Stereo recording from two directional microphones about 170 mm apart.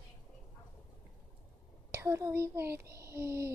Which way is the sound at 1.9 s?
15° right (ahead or behind).